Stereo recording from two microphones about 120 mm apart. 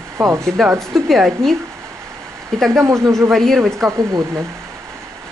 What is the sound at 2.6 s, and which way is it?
Speech, 25° right (ahead or behind).